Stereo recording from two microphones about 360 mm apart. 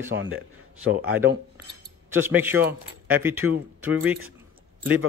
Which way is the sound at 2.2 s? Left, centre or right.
Centre.